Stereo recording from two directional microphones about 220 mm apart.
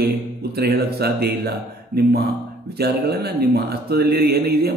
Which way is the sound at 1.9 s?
Centre (ahead or behind).